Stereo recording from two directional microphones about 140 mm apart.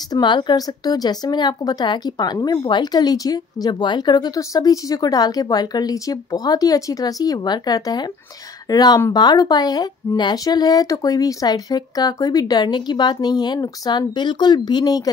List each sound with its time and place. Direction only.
0.1 s speech: 30° left (ahead or behind)